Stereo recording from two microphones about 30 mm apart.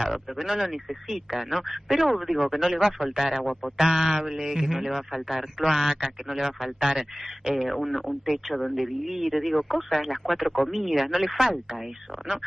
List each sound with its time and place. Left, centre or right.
0.4 s speech: centre
2.0 s speech: centre